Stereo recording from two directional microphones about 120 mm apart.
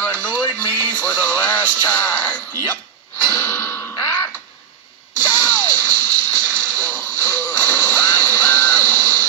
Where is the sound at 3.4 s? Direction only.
20° left (ahead or behind).